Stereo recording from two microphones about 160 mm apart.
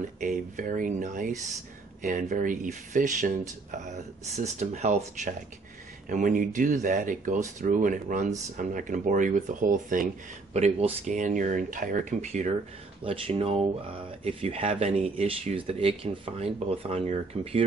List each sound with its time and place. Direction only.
0.2 s speech: 55° right (ahead or behind)
6.0 s speech: 55° right (ahead or behind)
10.5 s speech: 40° right (ahead or behind)